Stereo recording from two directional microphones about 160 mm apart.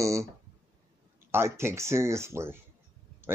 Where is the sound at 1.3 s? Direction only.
15° right (ahead or behind).